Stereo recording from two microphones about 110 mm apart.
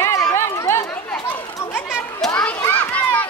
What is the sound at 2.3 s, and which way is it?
Children playing, 10° left (ahead or behind).